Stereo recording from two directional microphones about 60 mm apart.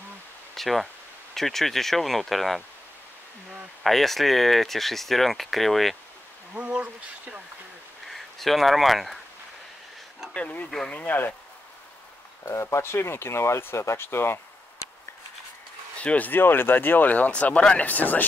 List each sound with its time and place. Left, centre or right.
0.6 s speech: centre
3.8 s speech: centre
6.5 s speech: right
8.1 s speech: centre
10.3 s speech: left
12.4 s speech: left
16.0 s speech: left
16.3 s speech: left